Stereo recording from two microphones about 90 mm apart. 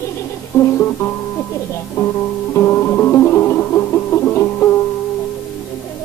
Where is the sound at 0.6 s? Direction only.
25° left (ahead or behind).